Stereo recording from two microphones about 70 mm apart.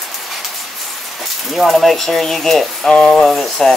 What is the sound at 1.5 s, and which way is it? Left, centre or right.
Speech, centre.